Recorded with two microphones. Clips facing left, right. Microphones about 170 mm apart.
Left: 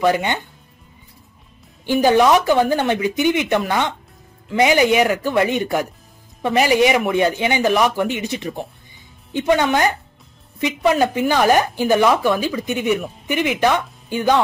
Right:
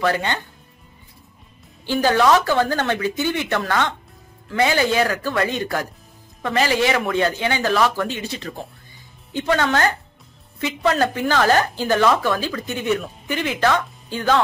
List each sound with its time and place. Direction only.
0.0 s speech: 15° left (ahead or behind)
1.9 s speech: 15° left (ahead or behind)